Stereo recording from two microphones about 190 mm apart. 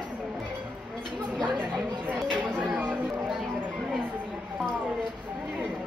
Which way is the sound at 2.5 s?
5° right (ahead or behind).